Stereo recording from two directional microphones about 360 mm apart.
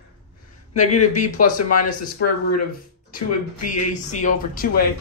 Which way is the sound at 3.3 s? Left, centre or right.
Left.